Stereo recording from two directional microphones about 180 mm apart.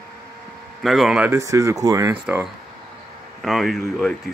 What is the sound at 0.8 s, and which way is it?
Speech, centre (ahead or behind).